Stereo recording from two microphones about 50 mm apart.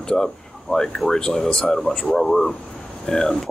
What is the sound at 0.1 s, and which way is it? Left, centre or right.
Speech, centre.